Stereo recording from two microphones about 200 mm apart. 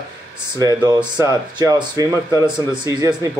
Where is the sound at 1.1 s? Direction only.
15° right (ahead or behind).